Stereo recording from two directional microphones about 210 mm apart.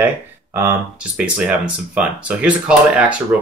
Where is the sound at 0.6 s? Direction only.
10° right (ahead or behind).